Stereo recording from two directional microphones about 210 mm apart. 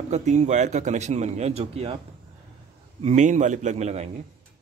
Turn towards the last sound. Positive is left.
turn(degrees=-30)  # may be behind; listen again after turning